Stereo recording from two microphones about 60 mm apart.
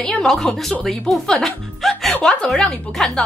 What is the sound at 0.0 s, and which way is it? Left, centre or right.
A woman's voice, centre.